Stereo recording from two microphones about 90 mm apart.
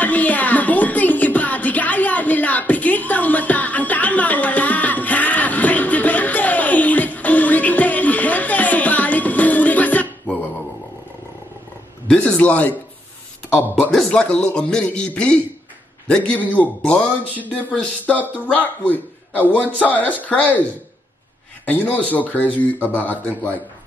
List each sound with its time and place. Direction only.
0.0 s music: 15° left (ahead or behind)
12.1 s a sound: 15° left (ahead or behind)
13.9 s speech: 10° left (ahead or behind)
21.6 s speech: 20° left (ahead or behind)